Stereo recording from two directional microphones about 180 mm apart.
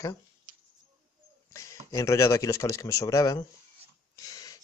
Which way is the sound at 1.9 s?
15° left (ahead or behind).